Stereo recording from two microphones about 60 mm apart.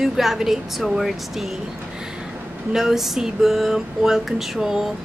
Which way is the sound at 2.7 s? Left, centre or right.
Centre.